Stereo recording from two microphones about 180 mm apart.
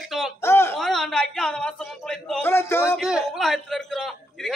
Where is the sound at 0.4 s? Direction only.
15° left (ahead or behind).